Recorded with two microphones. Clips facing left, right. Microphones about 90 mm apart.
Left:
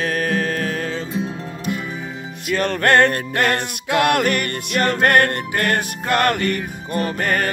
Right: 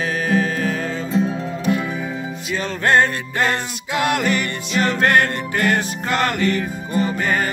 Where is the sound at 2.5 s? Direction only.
60° left (ahead or behind).